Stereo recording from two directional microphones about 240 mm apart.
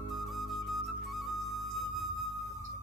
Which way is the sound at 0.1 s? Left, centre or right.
Centre.